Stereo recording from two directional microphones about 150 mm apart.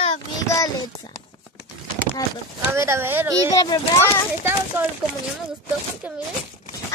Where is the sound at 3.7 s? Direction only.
25° left (ahead or behind).